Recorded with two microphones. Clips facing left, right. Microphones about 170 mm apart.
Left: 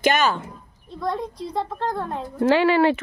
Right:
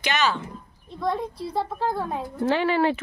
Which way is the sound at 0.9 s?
5° right (ahead or behind).